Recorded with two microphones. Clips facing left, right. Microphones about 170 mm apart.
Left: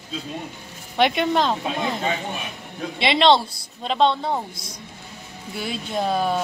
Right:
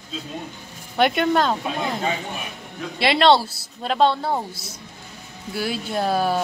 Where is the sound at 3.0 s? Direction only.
5° right (ahead or behind).